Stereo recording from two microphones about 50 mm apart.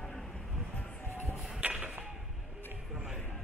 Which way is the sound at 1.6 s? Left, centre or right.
Right.